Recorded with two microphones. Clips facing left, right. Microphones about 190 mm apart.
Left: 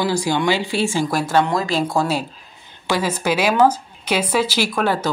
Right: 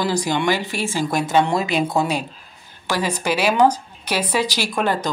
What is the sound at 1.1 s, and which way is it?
A woman's voice, 20° right (ahead or behind).